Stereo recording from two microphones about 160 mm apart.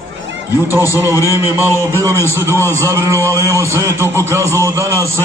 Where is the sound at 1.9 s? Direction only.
15° right (ahead or behind).